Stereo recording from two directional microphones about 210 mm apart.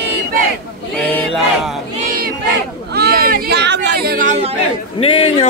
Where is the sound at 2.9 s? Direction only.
50° right (ahead or behind); by 4.6 s 30° right (ahead or behind).